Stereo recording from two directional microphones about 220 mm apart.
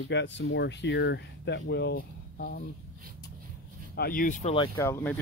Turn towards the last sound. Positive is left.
turn(degrees=10)  # may be behind; listen again after turning